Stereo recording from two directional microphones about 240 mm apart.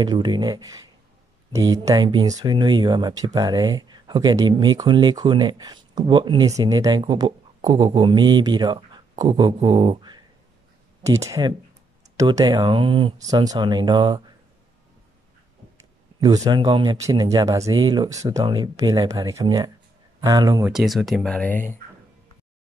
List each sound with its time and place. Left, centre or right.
0.0 s speech: centre
15.8 s speech: centre
20.7 s speech: centre